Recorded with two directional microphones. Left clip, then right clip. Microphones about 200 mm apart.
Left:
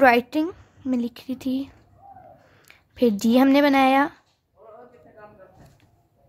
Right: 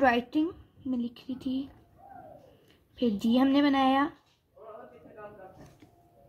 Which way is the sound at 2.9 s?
70° left (ahead or behind).